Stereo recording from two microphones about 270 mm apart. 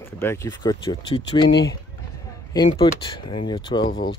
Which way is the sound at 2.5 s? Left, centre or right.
Centre.